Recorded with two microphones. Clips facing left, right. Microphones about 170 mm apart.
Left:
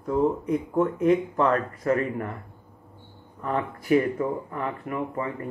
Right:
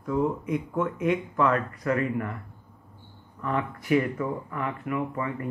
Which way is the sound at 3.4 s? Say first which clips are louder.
Left 2 dB; 35° left (ahead or behind).